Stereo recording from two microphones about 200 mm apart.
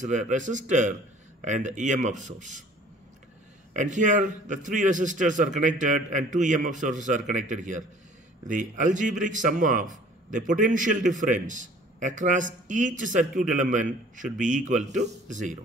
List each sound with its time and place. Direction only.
0.0 s a man's voice: 40° right (ahead or behind)
3.7 s a man's voice: 40° right (ahead or behind)